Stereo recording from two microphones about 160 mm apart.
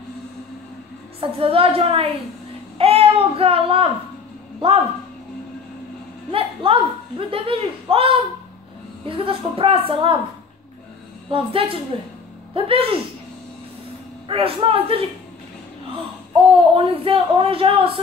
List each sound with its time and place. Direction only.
1.2 s a woman's voice: 35° right (ahead or behind)
6.3 s speech: 35° right (ahead or behind)
11.2 s speech: 35° right (ahead or behind)
14.2 s speech: 35° right (ahead or behind)
16.7 s speech: 35° right (ahead or behind)